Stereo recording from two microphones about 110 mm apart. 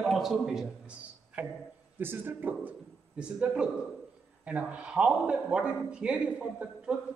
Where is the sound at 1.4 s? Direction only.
15° right (ahead or behind).